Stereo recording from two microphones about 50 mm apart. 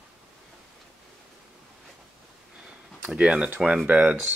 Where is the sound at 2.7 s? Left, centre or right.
Right.